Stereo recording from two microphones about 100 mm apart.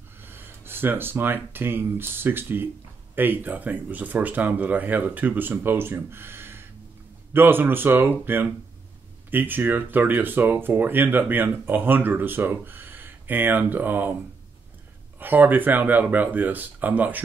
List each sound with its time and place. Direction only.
0.2 s speech: 20° right (ahead or behind)
15.1 s speech: 20° right (ahead or behind)